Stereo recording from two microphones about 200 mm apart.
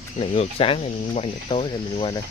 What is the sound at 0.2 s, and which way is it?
Speech, 30° left (ahead or behind).